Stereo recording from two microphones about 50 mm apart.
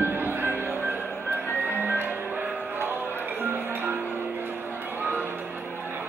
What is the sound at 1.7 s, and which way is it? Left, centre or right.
Music, right.